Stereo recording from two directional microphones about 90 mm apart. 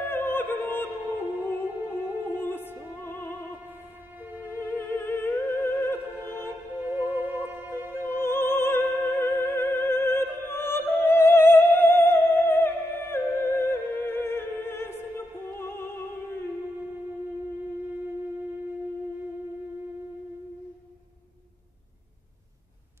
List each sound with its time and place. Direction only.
0.0 s music: 25° left (ahead or behind)
4.5 s music: 25° left (ahead or behind)
6.9 s music: 20° right (ahead or behind)
8.1 s opera: 25° left (ahead or behind)